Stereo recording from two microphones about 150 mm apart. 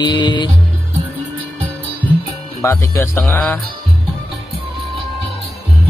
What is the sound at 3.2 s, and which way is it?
Music, 15° left (ahead or behind).